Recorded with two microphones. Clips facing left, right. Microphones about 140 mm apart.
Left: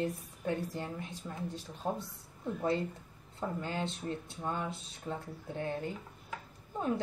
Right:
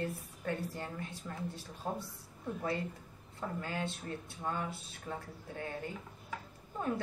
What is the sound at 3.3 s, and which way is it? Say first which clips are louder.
Speech: left 2 dB; 25° left (ahead or behind).